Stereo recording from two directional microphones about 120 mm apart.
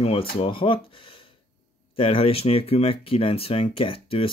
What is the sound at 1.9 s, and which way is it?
Speech, 50° left (ahead or behind).